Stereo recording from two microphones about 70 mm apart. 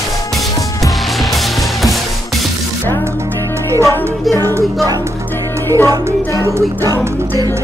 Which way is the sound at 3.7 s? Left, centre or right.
Right.